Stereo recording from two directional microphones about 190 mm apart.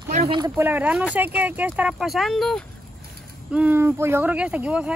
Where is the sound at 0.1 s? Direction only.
35° right (ahead or behind).